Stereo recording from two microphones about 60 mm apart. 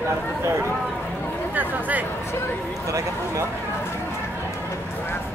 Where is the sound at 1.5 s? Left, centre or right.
Right.